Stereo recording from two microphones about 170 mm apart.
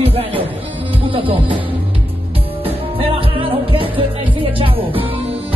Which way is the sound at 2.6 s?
35° right (ahead or behind).